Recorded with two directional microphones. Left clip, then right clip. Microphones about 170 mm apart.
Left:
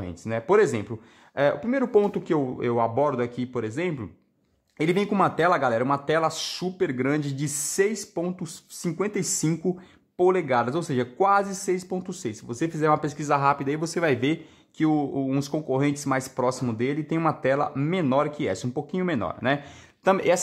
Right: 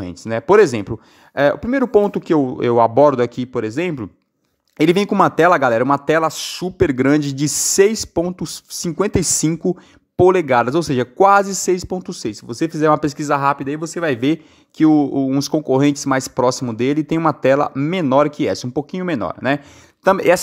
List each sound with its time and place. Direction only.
0.0 s speech: 40° right (ahead or behind)